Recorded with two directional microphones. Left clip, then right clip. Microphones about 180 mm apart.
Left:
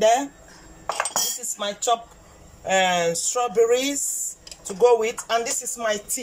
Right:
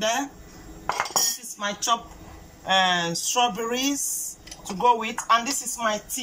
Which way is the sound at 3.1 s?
30° left (ahead or behind).